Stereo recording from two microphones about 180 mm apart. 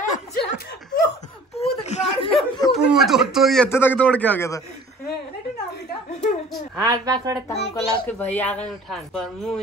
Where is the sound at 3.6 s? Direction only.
10° left (ahead or behind).